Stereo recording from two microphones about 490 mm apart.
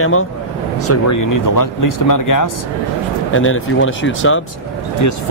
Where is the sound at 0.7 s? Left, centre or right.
Left.